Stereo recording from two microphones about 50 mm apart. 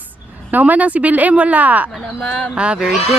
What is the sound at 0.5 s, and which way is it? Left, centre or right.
A woman's voice, right.